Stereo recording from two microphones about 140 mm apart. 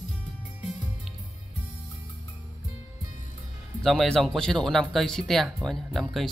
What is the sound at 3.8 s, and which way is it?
Speech, centre (ahead or behind).